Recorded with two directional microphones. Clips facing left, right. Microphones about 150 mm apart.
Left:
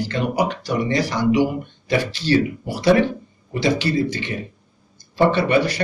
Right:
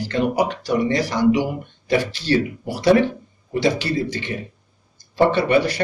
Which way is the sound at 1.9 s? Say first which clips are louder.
Right 1 dB; 50° right (ahead or behind).